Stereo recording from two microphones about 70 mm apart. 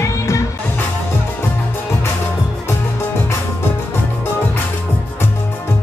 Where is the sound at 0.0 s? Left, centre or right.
Left.